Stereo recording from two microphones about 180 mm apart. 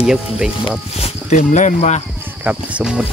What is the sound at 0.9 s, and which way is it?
Speech, 40° left (ahead or behind).